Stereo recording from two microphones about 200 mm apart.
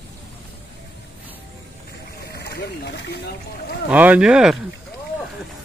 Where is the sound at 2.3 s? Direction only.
50° left (ahead or behind).